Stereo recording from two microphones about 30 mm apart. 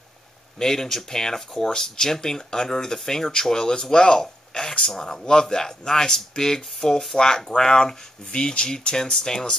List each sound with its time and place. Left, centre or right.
0.6 s speech: centre